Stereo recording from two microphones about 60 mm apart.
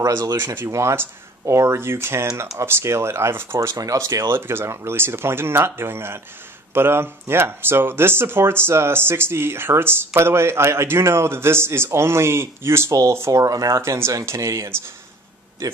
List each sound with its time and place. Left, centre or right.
0.0 s speech: right
0.7 s speech: right
3.6 s speech: right
4.3 s speech: right
13.3 s speech: right
13.7 s speech: right